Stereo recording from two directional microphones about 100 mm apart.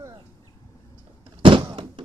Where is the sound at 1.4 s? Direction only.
60° right (ahead or behind).